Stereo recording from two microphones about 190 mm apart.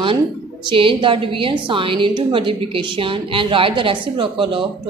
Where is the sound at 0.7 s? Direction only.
25° right (ahead or behind).